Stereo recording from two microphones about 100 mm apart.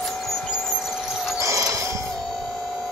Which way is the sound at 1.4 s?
35° right (ahead or behind).